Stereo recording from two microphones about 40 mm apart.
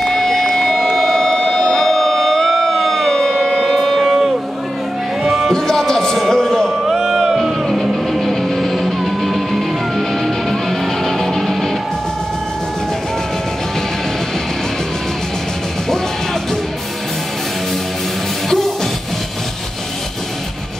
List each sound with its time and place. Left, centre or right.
0.0 s a sound: centre
3.3 s music: centre
5.5 s music: centre
6.3 s a sound: centre
7.0 s music: centre
7.6 s music: centre